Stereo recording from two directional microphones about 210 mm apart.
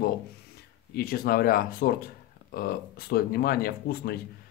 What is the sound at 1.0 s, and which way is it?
Speech, 45° left (ahead or behind).